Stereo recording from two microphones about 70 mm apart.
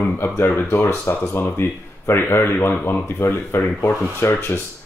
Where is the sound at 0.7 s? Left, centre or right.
Left.